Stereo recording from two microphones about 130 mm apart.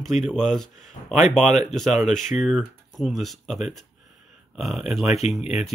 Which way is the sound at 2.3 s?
Centre (ahead or behind).